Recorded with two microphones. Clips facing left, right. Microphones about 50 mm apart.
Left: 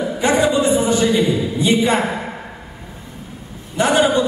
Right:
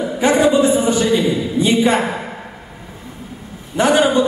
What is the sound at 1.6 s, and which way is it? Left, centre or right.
Speech, right.